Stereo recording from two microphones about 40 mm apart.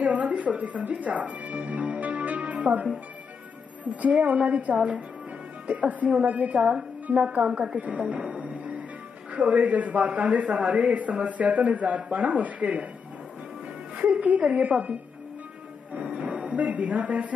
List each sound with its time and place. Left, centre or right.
0.0 s a man's voice: right
8.0 s music: right
9.3 s a man's voice: right
14.4 s a man's voice: right
16.0 s music: right
16.3 s speech: right